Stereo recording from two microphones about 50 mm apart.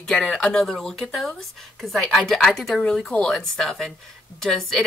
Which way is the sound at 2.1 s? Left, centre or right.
Centre.